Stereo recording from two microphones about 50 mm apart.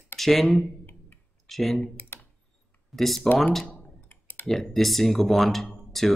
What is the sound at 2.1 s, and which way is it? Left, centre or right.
Computer keyboard, left.